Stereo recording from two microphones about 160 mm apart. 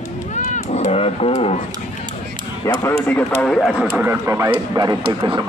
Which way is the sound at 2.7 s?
15° left (ahead or behind).